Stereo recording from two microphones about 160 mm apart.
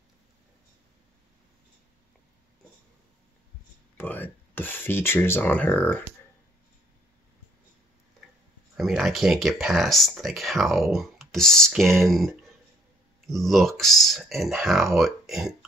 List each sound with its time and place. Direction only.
3.9 s speech: 10° left (ahead or behind)
8.7 s speech: centre (ahead or behind)